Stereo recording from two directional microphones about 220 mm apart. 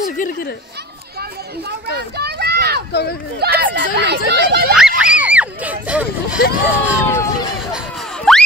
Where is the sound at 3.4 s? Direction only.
45° right (ahead or behind).